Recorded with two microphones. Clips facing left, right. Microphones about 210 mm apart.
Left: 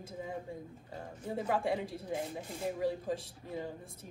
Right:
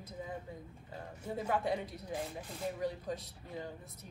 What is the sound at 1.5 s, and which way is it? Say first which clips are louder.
Speech: left 1 dB; 25° left (ahead or behind).